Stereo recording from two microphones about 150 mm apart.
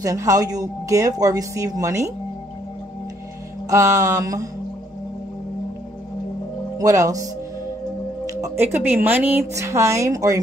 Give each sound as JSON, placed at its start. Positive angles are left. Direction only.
{"t": 0.0, "sound": "speech", "side_deg": -20}
{"t": 3.7, "sound": "speech", "side_deg": -20}
{"t": 6.8, "sound": "speech", "side_deg": -25}
{"t": 8.4, "sound": "speech", "side_deg": -15}